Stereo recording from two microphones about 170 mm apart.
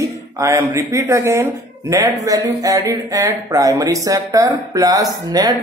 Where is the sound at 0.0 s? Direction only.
15° right (ahead or behind).